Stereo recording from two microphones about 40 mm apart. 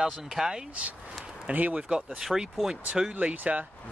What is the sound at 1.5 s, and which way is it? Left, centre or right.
Speech, right.